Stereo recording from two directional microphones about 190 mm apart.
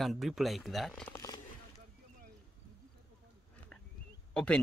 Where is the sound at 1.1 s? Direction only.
20° left (ahead or behind).